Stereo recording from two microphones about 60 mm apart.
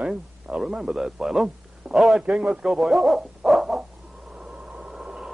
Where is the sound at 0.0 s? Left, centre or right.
Centre.